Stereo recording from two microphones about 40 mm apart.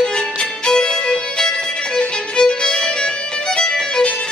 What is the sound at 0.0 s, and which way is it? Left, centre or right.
Music, left.